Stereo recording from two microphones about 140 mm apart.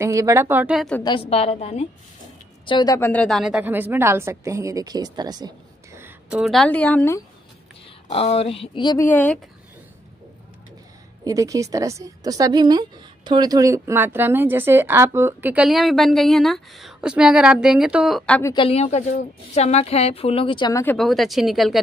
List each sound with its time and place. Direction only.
0.0 s a woman's voice: 20° right (ahead or behind)
0.7 s speech: 5° left (ahead or behind)
1.3 s a woman's voice: 45° left (ahead or behind)
2.6 s a woman's voice: 30° left (ahead or behind)
3.0 s a woman's voice: 10° left (ahead or behind); by 5.5 s 30° right (ahead or behind)
6.3 s a woman's voice: centre (ahead or behind)
8.1 s a woman's voice: 50° left (ahead or behind)
8.8 s speech: 20° left (ahead or behind)
9.1 s a woman's voice: 10° left (ahead or behind)
11.2 s a woman's voice: 25° right (ahead or behind); by 18.4 s 5° left (ahead or behind)
18.4 s speech: 30° left (ahead or behind)
18.7 s a woman's voice: 50° left (ahead or behind)
20.7 s a woman's voice: 15° left (ahead or behind)
21.0 s speech: centre (ahead or behind)